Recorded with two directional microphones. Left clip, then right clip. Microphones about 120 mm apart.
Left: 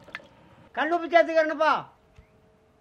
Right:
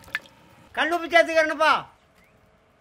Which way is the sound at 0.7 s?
10° right (ahead or behind).